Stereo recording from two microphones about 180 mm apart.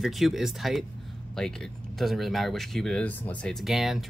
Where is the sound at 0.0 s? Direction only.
Centre (ahead or behind).